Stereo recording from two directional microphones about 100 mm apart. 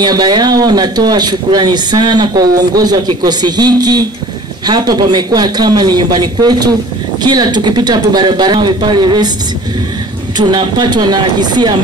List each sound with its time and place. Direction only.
0.0 s speech: 45° right (ahead or behind)
10.3 s speech: 45° right (ahead or behind)